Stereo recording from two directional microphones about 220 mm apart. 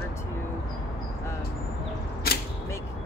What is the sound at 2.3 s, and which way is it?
Single-lens reflex camera, 45° left (ahead or behind).